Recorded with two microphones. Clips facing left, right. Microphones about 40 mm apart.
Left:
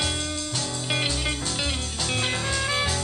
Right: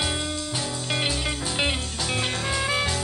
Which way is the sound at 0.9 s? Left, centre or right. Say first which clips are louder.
Right 1 dB; centre.